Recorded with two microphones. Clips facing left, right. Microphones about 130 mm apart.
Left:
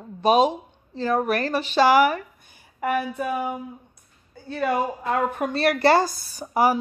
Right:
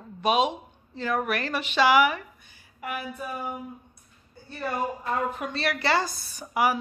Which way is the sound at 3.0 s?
75° left (ahead or behind).